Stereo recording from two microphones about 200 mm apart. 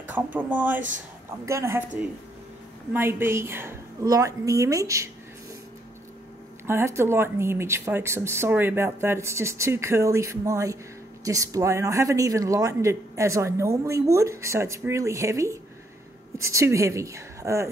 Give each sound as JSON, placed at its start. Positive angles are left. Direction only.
{"t": 0.1, "sound": "speech", "side_deg": -10}
{"t": 2.9, "sound": "speech", "side_deg": -10}
{"t": 6.7, "sound": "speech", "side_deg": -15}